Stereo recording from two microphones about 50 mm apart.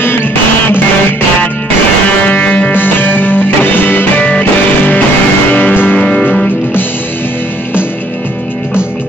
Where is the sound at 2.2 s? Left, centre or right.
Left.